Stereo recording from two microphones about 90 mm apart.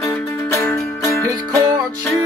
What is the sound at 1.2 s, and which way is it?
Music, 40° right (ahead or behind).